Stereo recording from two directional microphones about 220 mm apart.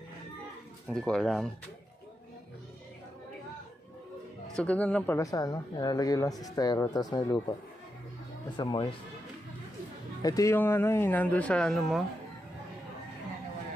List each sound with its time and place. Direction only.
0.8 s speech: 5° left (ahead or behind)
4.6 s speech: 5° left (ahead or behind)
8.5 s speech: 20° left (ahead or behind)
10.2 s speech: 15° left (ahead or behind)